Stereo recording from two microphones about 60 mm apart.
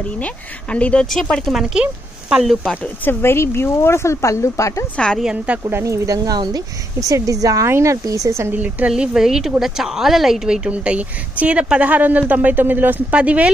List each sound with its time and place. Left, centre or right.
0.2 s speech: left
1.5 s speech: centre
1.8 s speech: centre
3.1 s a woman's voice: left
4.9 s a woman's voice: centre
5.2 s speech: centre
5.9 s speech: right
7.6 s speech: right
8.5 s a woman's voice: right
8.9 s a woman's voice: centre